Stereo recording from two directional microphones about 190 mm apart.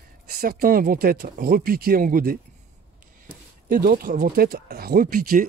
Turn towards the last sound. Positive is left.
turn(degrees=-50)  # may be behind; listen again after turning